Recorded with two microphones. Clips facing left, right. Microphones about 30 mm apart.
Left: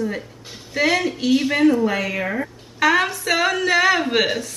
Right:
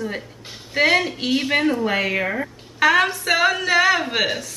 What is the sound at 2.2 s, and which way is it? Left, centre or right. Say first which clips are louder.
Speech: even; centre.